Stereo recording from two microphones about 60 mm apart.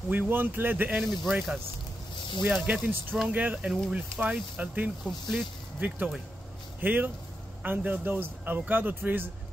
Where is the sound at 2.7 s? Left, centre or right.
Right.